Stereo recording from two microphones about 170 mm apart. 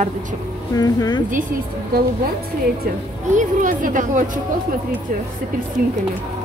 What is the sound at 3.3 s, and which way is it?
Speech, 50° right (ahead or behind).